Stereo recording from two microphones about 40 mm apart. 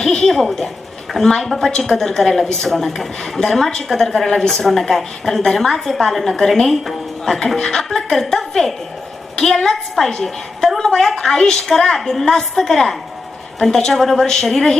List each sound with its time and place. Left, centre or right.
0.0 s a woman's voice: centre
7.3 s a woman's voice: centre